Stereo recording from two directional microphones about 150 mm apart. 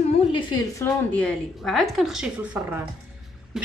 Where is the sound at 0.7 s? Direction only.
15° left (ahead or behind).